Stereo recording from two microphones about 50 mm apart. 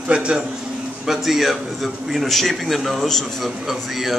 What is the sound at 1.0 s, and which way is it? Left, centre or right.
Speech, centre.